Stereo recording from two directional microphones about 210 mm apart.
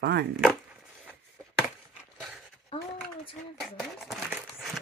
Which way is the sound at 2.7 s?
25° left (ahead or behind).